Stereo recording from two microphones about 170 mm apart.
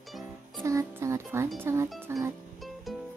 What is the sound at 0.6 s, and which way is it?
Speech, 20° right (ahead or behind).